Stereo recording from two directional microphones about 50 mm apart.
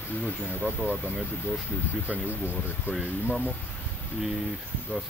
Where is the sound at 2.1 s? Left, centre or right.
Right.